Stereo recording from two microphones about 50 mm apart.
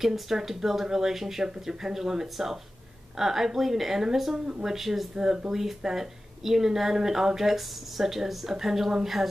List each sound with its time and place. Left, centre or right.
0.0 s speech: centre